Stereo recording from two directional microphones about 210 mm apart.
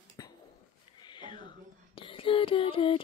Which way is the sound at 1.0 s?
20° left (ahead or behind).